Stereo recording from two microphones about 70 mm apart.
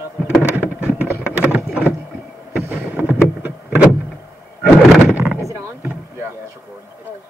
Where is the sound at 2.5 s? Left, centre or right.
Right.